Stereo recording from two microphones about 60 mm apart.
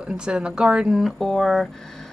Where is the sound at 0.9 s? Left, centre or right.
Centre.